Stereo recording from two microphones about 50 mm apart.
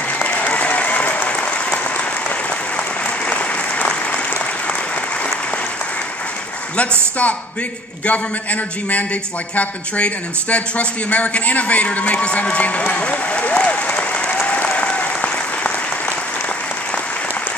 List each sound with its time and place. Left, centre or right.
0.2 s applause: left
1.4 s applause: left
3.3 s applause: left
8.0 s a man's voice: left